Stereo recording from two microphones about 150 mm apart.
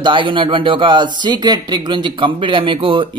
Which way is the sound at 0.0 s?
35° right (ahead or behind).